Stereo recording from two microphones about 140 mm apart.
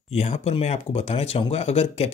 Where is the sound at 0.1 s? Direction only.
50° left (ahead or behind).